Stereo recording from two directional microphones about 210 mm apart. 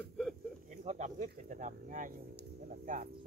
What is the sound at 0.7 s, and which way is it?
Speech, 35° right (ahead or behind).